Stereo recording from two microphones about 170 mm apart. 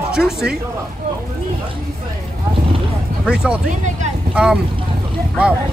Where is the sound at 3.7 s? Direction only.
45° right (ahead or behind).